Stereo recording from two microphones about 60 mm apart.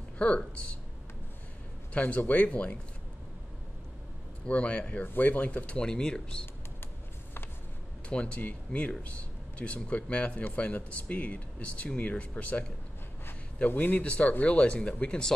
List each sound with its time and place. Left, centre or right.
0.2 s speech: centre
2.0 s speech: left
4.5 s speech: left
5.0 s speech: left
5.8 s speech: centre
8.4 s speech: left
13.7 s speech: left